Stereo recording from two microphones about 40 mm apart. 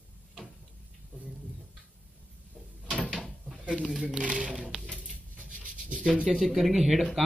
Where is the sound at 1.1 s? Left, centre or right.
Right.